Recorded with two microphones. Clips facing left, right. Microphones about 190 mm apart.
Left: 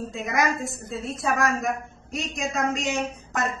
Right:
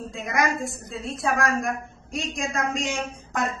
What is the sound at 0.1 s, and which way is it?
A woman's voice, centre (ahead or behind).